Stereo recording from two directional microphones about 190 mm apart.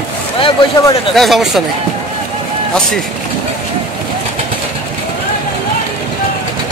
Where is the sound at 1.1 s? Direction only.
Centre (ahead or behind).